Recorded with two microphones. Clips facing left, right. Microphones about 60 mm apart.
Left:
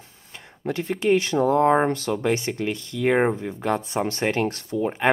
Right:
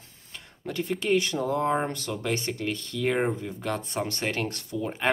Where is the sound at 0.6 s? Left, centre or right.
Left.